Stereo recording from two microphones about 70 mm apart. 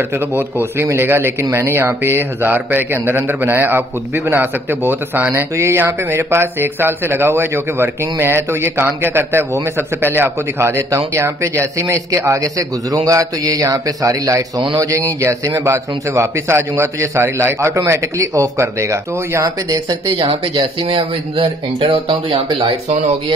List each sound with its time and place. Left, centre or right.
0.3 s speech: right
5.6 s speech: right
18.2 s speech: right